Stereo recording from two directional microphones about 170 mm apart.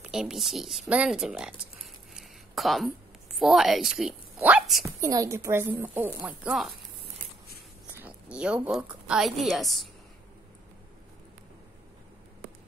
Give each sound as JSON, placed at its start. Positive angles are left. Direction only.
{"t": 0.0, "sound": "a woman's voice", "side_deg": -5}
{"t": 2.1, "sound": "a sound", "side_deg": 0}
{"t": 3.3, "sound": "a woman's voice", "side_deg": 0}
{"t": 4.8, "sound": "a woman's voice", "side_deg": -20}
{"t": 7.8, "sound": "a sound", "side_deg": -5}
{"t": 8.6, "sound": "a woman's voice", "side_deg": -5}